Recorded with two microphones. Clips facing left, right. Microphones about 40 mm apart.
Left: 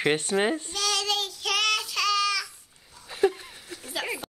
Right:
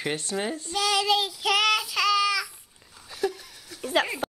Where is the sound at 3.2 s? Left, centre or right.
Left.